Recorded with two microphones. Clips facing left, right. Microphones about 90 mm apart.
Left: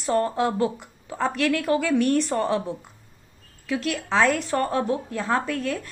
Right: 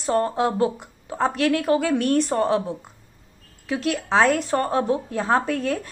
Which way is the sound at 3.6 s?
30° right (ahead or behind).